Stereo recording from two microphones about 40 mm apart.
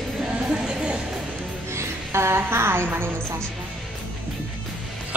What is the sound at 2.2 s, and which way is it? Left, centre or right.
Speech, right.